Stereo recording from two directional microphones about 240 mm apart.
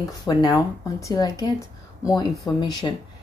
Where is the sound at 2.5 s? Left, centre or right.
Centre.